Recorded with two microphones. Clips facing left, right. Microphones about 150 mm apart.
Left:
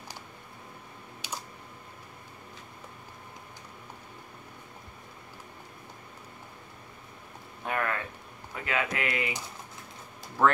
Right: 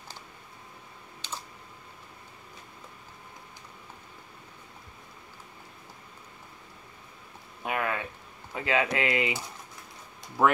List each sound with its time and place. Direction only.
1.2 s computer keyboard: 10° left (ahead or behind)
7.6 s a sound: 15° right (ahead or behind)
8.5 s speech: 25° right (ahead or behind)
10.4 s speech: 15° right (ahead or behind)